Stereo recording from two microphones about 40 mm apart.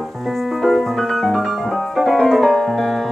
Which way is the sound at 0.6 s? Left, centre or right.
Centre.